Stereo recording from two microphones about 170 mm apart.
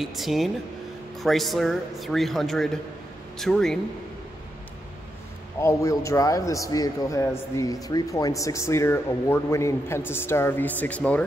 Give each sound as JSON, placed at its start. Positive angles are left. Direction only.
{"t": 0.0, "sound": "speech", "side_deg": 0}
{"t": 5.6, "sound": "a man's voice", "side_deg": 15}